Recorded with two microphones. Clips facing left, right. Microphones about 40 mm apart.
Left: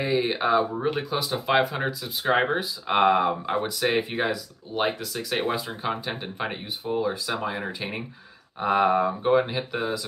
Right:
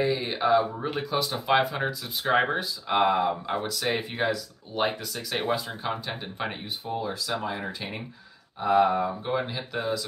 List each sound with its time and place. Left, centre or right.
0.0 s a sound: centre
0.8 s speech: centre
2.9 s speech: left